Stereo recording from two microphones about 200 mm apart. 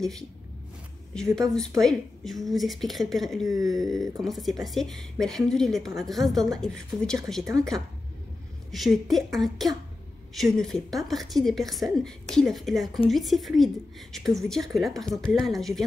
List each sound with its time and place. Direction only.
1.8 s a woman's voice: centre (ahead or behind)
3.4 s speech: 20° right (ahead or behind)
3.7 s a woman's voice: centre (ahead or behind)